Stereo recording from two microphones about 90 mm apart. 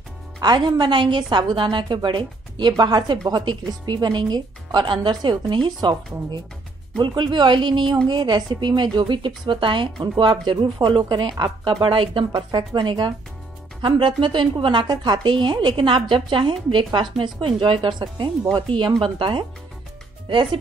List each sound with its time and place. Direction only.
0.4 s speech: 50° right (ahead or behind)
7.0 s a woman's voice: 55° right (ahead or behind); by 12.3 s 75° right (ahead or behind)
12.4 s speech: 60° right (ahead or behind)
13.7 s a woman's voice: 70° right (ahead or behind)